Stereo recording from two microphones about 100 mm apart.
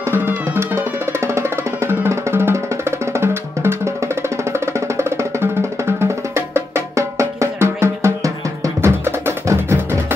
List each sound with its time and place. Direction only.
0.1 s music: 25° right (ahead or behind)